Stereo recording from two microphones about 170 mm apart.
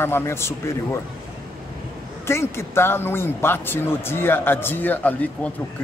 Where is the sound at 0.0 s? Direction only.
15° left (ahead or behind).